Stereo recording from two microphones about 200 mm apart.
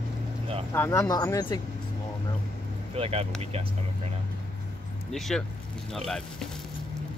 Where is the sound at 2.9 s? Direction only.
30° right (ahead or behind).